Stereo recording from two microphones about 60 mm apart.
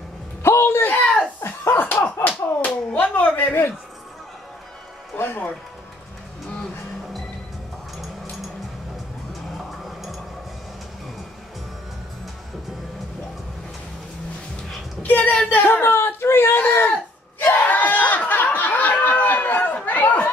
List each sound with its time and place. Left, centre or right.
0.4 s a sound: left
1.7 s slap: left
2.0 s slap: left
2.6 s speech: left
5.1 s speech: left
9.8 s a sound: centre
15.0 s speech: left
15.6 s whimper: left
17.4 s snicker: left